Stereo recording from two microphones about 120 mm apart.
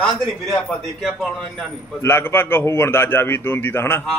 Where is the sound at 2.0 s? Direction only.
20° left (ahead or behind).